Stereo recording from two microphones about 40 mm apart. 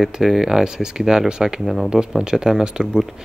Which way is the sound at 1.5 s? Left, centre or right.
Centre.